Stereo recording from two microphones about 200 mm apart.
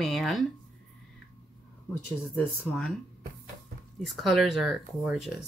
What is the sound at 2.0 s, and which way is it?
Speech, 10° left (ahead or behind).